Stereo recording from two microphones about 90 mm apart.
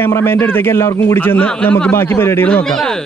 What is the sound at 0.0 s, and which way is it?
A man's voice, 30° left (ahead or behind).